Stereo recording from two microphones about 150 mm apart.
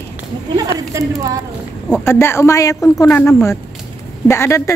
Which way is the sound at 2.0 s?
15° left (ahead or behind).